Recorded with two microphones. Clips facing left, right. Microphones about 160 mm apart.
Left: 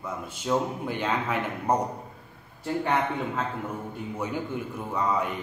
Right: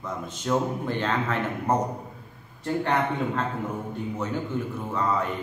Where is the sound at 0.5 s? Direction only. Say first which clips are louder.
Right 1 dB; 10° left (ahead or behind).